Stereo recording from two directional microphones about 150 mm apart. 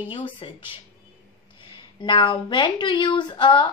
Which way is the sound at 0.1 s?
35° left (ahead or behind).